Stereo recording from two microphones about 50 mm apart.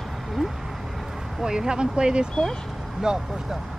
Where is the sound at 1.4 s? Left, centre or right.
Centre.